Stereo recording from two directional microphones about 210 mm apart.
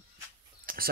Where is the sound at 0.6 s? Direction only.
45° right (ahead or behind).